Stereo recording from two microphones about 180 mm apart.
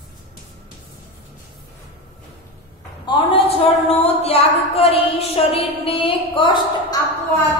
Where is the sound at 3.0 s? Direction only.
25° left (ahead or behind).